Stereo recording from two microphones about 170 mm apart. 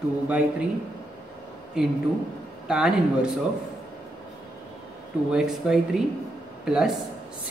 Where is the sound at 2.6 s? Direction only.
5° right (ahead or behind).